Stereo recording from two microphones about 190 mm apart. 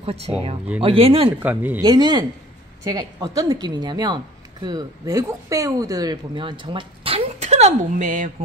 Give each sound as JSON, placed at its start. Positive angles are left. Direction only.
{"t": 0.0, "sound": "speech", "side_deg": -35}
{"t": 1.4, "sound": "speech", "side_deg": -10}
{"t": 1.8, "sound": "speech", "side_deg": -20}